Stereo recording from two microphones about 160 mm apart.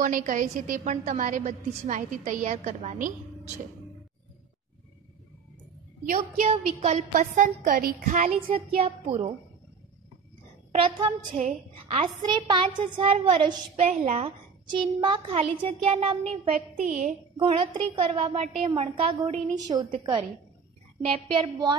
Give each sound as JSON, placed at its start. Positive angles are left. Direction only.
{"t": 0.0, "sound": "a woman's voice", "side_deg": -55}
{"t": 6.0, "sound": "a woman's voice", "side_deg": -55}
{"t": 6.5, "sound": "a woman's voice", "side_deg": -45}
{"t": 8.5, "sound": "a woman's voice", "side_deg": -35}
{"t": 10.8, "sound": "a woman's voice", "side_deg": -30}
{"t": 11.3, "sound": "a woman's voice", "side_deg": -50}
{"t": 12.0, "sound": "a woman's voice", "side_deg": -30}
{"t": 14.7, "sound": "a woman's voice", "side_deg": -30}
{"t": 16.5, "sound": "a woman's voice", "side_deg": -55}
{"t": 17.4, "sound": "a woman's voice", "side_deg": -35}
{"t": 19.5, "sound": "a woman's voice", "side_deg": -25}